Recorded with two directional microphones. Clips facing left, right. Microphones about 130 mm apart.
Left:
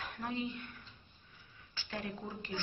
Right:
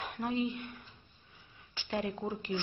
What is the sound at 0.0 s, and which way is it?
Speech, 25° right (ahead or behind).